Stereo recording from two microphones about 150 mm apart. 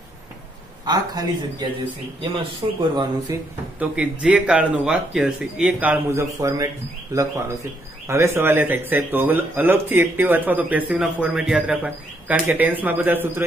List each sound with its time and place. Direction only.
0.8 s speech: 25° right (ahead or behind)
2.3 s speech: 30° right (ahead or behind)
3.8 s speech: 10° right (ahead or behind)